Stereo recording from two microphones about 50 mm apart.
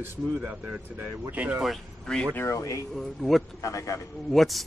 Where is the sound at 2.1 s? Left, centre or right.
Centre.